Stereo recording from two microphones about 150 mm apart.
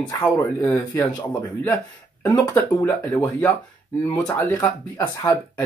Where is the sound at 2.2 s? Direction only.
15° left (ahead or behind).